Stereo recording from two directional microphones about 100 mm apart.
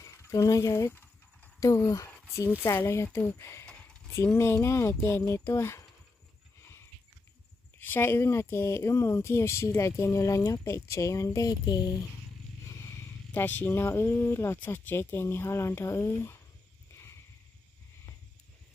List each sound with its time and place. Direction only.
0.0 s speech: 30° left (ahead or behind)
7.8 s speech: 20° left (ahead or behind); by 11.9 s 40° left (ahead or behind)
13.3 s speech: 20° left (ahead or behind)
16.9 s a sound: 25° left (ahead or behind)